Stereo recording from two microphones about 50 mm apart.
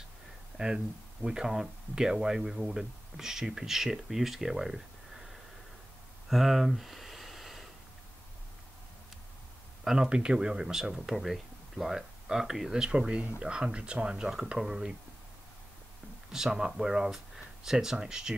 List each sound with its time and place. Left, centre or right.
0.6 s speech: centre
6.2 s a sound: centre
9.8 s speech: centre
16.3 s speech: centre